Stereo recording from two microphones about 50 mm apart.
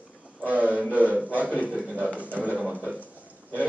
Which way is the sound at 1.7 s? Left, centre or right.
Centre.